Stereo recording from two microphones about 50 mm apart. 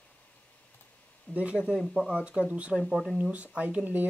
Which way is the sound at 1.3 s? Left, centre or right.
Left.